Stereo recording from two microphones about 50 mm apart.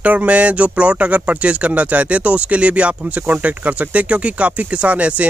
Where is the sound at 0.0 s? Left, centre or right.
Right.